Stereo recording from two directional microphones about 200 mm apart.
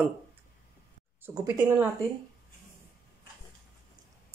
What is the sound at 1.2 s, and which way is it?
Speech, 15° right (ahead or behind).